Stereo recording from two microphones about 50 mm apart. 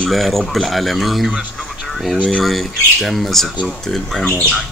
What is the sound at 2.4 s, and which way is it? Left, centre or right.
Speech, centre.